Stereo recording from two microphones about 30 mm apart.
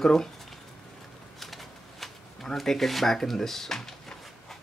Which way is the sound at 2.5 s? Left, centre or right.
Centre.